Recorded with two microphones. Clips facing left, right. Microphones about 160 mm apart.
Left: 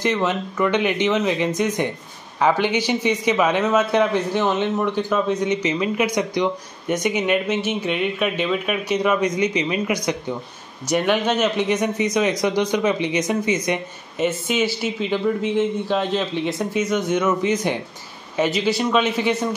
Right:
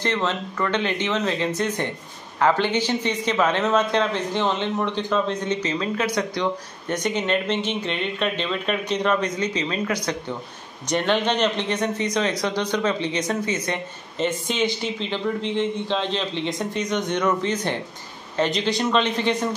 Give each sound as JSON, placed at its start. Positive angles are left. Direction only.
{"t": 0.0, "sound": "a man's voice", "side_deg": 15}